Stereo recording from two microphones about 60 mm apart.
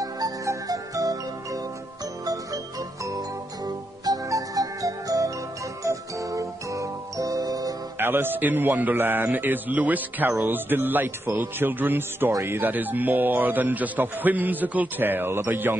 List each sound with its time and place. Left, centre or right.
0.0 s music: right
3.1 s music: right
5.9 s music: right
8.0 s a man's voice: right